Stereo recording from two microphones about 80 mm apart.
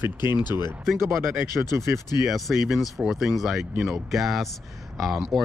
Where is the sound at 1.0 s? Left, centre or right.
Right.